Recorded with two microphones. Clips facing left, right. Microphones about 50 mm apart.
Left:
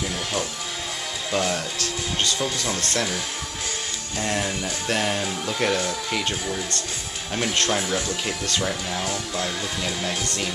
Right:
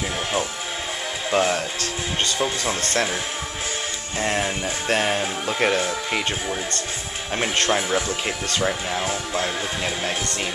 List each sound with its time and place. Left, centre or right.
1.3 s speech: right
4.2 s speech: right
4.9 s speech: right